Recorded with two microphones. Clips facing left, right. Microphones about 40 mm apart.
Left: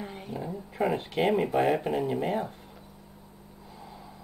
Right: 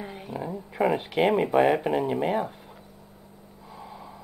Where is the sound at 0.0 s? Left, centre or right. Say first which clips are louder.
Right 2 dB; centre.